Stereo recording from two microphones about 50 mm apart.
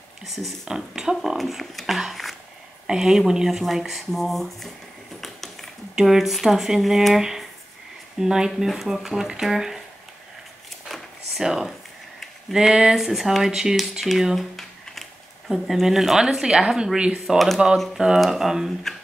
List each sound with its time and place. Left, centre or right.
0.7 s speech: centre
5.2 s a sound: centre
5.9 s speech: centre
7.2 s speech: centre
8.5 s speech: centre
10.9 s a sound: centre
12.5 s speech: centre
14.3 s speech: centre